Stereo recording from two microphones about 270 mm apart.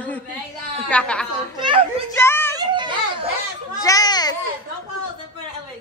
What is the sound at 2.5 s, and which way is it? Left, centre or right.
Children playing, centre.